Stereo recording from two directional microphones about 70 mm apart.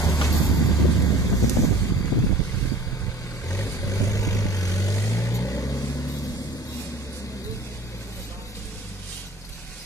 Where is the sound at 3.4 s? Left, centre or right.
Left.